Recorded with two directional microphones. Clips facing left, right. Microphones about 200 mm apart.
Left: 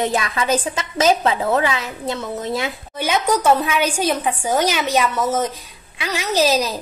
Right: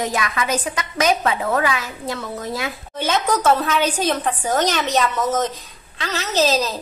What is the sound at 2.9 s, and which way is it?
A woman's voice, 10° left (ahead or behind).